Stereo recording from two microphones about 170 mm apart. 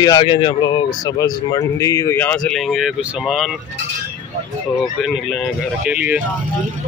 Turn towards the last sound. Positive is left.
turn(degrees=-10)  # may be behind; listen again after turning